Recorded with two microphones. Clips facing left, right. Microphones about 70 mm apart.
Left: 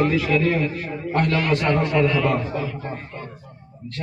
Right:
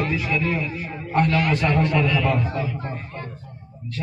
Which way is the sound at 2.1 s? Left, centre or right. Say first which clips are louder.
Left 1 dB; left.